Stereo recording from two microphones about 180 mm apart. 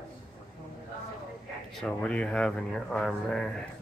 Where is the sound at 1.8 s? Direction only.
5° left (ahead or behind).